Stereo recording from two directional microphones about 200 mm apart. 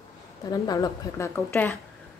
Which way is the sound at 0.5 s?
20° left (ahead or behind).